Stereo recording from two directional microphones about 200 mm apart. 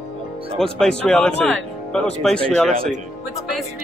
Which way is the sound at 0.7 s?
5° left (ahead or behind).